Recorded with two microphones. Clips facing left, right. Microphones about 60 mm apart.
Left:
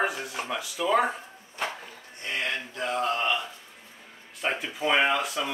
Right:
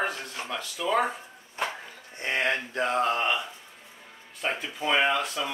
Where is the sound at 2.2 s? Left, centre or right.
Right.